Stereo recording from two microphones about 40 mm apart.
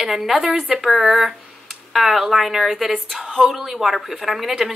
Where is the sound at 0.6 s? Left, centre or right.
Centre.